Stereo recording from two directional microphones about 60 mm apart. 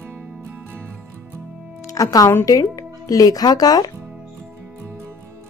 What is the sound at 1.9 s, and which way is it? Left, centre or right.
Speech, left.